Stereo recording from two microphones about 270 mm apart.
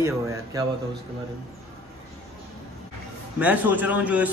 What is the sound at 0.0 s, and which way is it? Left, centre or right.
Speech, centre.